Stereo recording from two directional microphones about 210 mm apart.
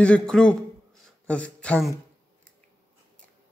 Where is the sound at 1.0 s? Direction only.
5° left (ahead or behind).